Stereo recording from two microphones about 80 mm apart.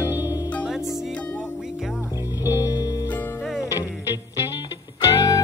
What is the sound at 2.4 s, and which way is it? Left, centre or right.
Music, left.